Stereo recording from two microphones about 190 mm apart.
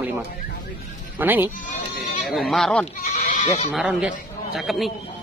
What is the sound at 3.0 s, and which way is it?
Speech, 40° left (ahead or behind).